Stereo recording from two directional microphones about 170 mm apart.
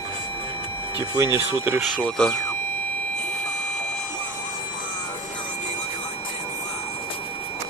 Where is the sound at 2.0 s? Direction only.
5° left (ahead or behind).